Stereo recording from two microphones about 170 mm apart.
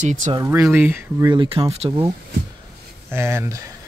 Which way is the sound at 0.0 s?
45° right (ahead or behind).